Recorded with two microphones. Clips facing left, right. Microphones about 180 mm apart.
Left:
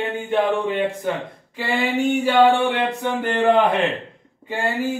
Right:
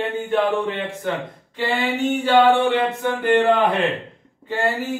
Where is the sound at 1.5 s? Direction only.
10° left (ahead or behind).